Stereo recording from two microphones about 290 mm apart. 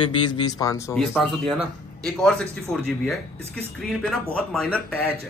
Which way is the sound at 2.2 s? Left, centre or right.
Centre.